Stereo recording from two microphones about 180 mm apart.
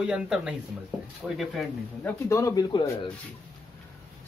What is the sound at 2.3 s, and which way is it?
Speech, 15° left (ahead or behind).